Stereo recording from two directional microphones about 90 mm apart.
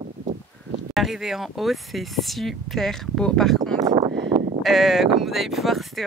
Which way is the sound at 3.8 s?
60° right (ahead or behind).